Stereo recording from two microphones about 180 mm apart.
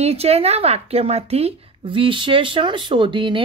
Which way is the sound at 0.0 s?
35° right (ahead or behind).